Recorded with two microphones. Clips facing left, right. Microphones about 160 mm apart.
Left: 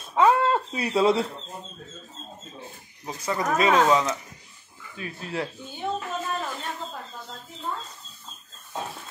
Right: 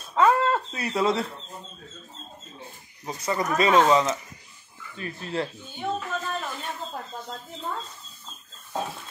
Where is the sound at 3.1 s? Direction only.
5° left (ahead or behind).